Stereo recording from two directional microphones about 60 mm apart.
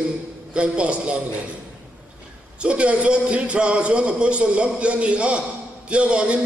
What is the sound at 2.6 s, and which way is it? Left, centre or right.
A man's voice, centre.